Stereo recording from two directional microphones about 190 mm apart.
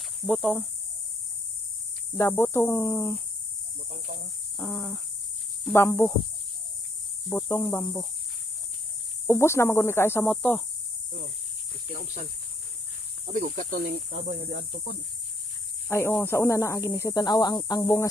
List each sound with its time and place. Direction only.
0.3 s insect: centre (ahead or behind)
2.1 s speech: 15° left (ahead or behind)
4.6 s insect: centre (ahead or behind)
5.7 s speech: 15° left (ahead or behind)
7.2 s speech: 15° left (ahead or behind)
9.3 s speech: 15° left (ahead or behind)
13.3 s speech: 45° right (ahead or behind)
15.9 s speech: 15° left (ahead or behind)